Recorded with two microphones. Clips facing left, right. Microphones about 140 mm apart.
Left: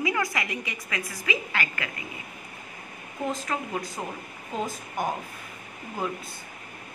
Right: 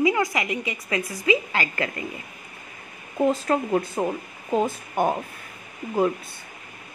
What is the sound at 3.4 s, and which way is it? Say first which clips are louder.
Speech: right 9 dB; 40° right (ahead or behind).